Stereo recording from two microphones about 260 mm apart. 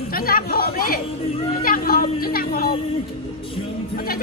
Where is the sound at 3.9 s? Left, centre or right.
Left.